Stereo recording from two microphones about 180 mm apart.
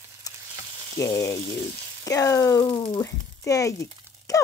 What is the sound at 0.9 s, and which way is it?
Speech, 15° left (ahead or behind).